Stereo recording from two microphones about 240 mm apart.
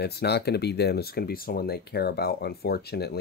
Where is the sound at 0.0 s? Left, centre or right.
Left.